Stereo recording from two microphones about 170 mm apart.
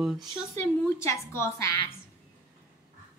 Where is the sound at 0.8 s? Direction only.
15° left (ahead or behind).